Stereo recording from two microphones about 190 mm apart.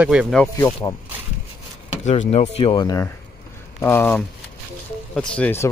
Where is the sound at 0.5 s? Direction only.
20° left (ahead or behind).